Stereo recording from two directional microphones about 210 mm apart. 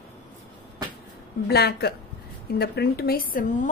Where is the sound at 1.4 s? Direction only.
50° left (ahead or behind).